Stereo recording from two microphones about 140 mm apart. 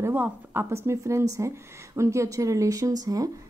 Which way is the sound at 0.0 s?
15° right (ahead or behind).